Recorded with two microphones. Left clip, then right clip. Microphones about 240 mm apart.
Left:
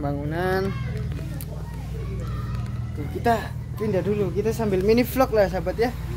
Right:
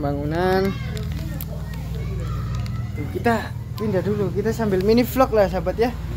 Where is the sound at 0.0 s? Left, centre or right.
Centre.